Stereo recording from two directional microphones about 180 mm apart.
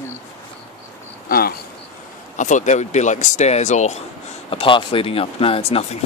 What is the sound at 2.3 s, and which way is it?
Speech, 45° left (ahead or behind).